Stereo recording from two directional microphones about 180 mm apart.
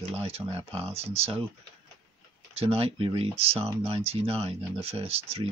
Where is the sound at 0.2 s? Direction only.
30° right (ahead or behind).